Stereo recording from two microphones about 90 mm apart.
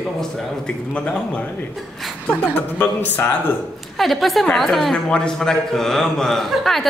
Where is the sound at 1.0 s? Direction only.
15° left (ahead or behind).